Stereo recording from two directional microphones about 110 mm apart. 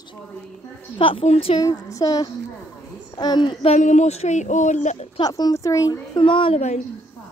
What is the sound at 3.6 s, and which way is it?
Speech, 80° left.